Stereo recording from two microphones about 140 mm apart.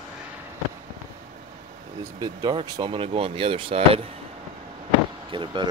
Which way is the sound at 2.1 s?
30° right (ahead or behind).